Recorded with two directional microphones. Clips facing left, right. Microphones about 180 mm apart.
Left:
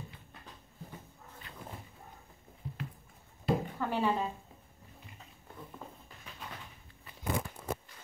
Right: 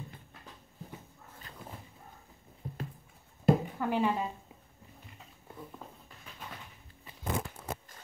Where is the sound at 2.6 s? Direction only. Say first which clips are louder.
Right 1 dB; 50° right (ahead or behind).